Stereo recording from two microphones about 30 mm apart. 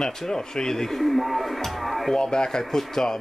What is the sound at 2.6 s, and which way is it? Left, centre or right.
Speech, centre.